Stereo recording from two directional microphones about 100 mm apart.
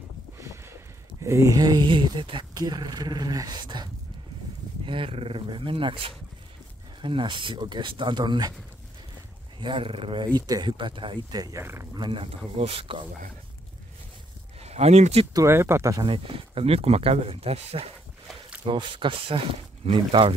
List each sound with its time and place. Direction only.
0.4 s a sound: 30° right (ahead or behind)
1.2 s speech: 30° right (ahead or behind)
1.9 s speech: 55° right (ahead or behind)
4.8 s speech: 60° right (ahead or behind); by 8.5 s 45° right (ahead or behind)
9.6 s speech: 60° right (ahead or behind)
10.2 s speech: 40° right (ahead or behind)
11.3 s speech: 40° right (ahead or behind)
11.6 s speech: 25° right (ahead or behind)
11.9 s speech: 55° right (ahead or behind)
12.5 s speech: 70° right (ahead or behind)
14.6 s speech: 90° right
15.3 s speech: 25° right (ahead or behind)
16.0 s speech: 60° right (ahead or behind); by 17.9 s 85° right
18.7 s speech: 55° right (ahead or behind)